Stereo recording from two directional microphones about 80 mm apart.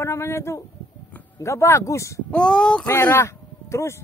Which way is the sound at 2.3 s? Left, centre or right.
Centre.